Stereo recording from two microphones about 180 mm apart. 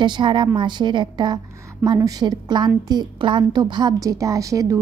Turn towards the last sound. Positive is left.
turn(degrees=-20)  # may be behind; listen again after turning